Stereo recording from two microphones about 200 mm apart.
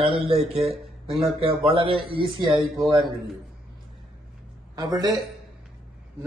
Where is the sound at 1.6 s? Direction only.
25° right (ahead or behind).